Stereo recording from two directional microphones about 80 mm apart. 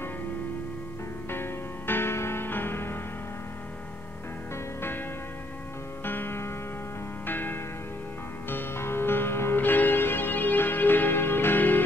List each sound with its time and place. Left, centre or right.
1.3 s music: left
6.0 s music: left